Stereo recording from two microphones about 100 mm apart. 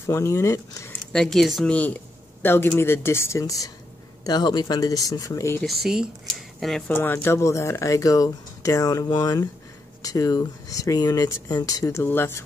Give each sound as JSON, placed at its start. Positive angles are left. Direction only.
{"t": 0.0, "sound": "speech", "side_deg": 25}
{"t": 1.1, "sound": "speech", "side_deg": 5}
{"t": 5.7, "sound": "speech", "side_deg": -5}
{"t": 6.9, "sound": "speech", "side_deg": 20}
{"t": 11.8, "sound": "speech", "side_deg": 25}